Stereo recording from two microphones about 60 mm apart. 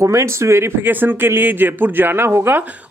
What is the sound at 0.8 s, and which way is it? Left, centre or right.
Speech, right.